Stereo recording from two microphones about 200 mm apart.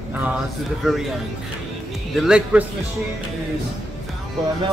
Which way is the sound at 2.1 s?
Centre (ahead or behind).